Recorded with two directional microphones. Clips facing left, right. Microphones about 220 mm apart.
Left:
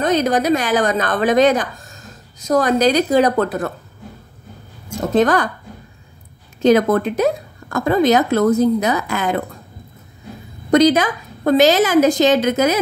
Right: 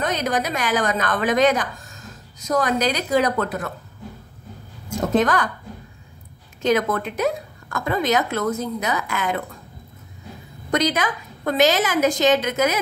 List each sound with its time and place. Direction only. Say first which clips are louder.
0.0 s a woman's voice: left 7 dB; 30° left (ahead or behind)
5.2 s a woman's voice: left 5 dB; 30° left (ahead or behind)
6.6 s a woman's voice: left 7 dB; 35° left (ahead or behind)
10.7 s a woman's voice: left 9 dB; 30° left (ahead or behind)